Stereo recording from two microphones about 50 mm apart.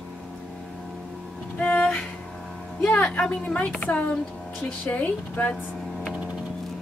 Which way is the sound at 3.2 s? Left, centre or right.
Left.